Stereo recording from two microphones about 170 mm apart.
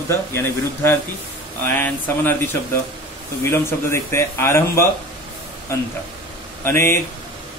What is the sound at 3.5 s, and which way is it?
Speech, 15° left (ahead or behind).